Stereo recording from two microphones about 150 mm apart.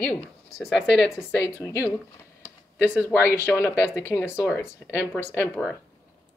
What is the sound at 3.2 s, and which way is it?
Speech, 20° left (ahead or behind).